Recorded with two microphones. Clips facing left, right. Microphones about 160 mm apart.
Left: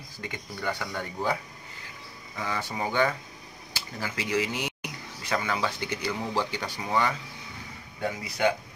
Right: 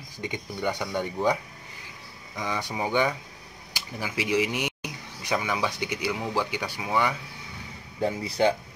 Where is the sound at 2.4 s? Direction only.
15° right (ahead or behind).